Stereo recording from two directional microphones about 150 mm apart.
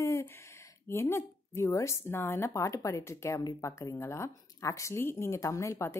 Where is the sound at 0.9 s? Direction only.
15° left (ahead or behind).